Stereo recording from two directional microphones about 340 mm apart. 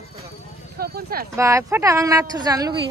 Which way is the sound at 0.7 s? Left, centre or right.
Right.